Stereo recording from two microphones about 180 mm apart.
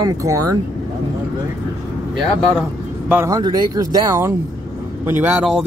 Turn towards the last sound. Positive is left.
turn(degrees=-10)  # may be behind; listen again after turning